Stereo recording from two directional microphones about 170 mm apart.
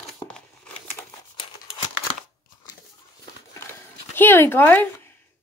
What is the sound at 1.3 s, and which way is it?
Crumpling, 30° left (ahead or behind).